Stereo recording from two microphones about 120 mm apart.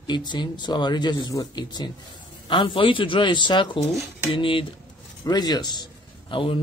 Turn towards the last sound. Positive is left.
turn(degrees=45)  # may be behind; listen again after turning